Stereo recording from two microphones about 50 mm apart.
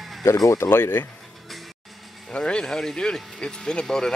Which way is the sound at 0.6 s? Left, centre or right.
Left.